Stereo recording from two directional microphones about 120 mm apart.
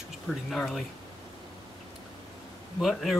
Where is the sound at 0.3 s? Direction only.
Centre (ahead or behind).